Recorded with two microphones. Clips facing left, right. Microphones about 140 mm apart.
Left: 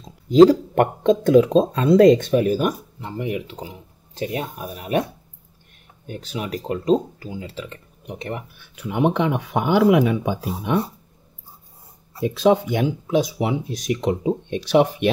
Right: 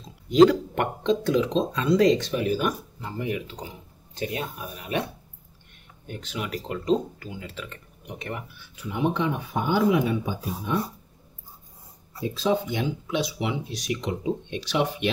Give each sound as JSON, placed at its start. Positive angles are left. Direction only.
{"t": 0.3, "sound": "speech", "side_deg": 35}
{"t": 3.0, "sound": "speech", "side_deg": 25}
{"t": 6.0, "sound": "speech", "side_deg": 35}
{"t": 8.5, "sound": "speech", "side_deg": 60}
{"t": 12.2, "sound": "speech", "side_deg": 70}
{"t": 12.7, "sound": "speech", "side_deg": 40}